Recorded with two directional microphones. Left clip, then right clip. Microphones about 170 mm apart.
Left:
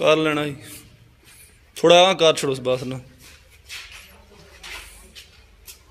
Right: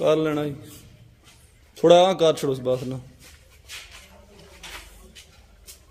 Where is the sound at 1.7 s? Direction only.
20° right (ahead or behind).